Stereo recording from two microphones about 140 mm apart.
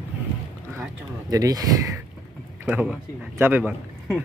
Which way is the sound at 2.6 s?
10° right (ahead or behind).